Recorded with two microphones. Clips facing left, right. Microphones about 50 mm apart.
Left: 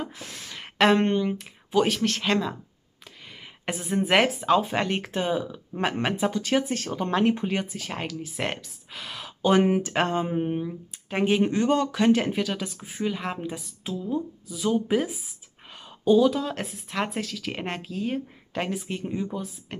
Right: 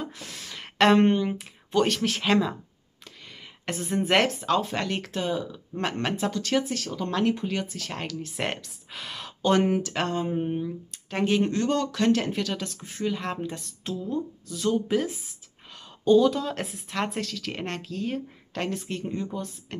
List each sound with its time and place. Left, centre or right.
0.0 s a sound: centre
3.6 s speech: centre
6.7 s speech: left; by 19.8 s centre